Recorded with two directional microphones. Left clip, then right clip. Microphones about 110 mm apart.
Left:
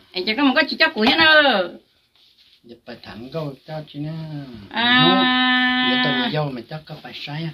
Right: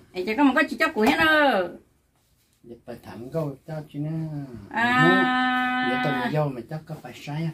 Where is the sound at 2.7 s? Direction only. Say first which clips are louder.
Even; 40° right (ahead or behind).